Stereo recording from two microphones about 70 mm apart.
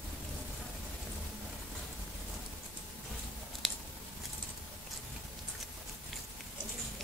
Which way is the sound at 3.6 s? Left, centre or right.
Centre.